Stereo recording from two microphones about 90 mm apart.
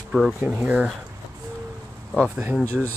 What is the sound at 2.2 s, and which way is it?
Speech, 20° right (ahead or behind).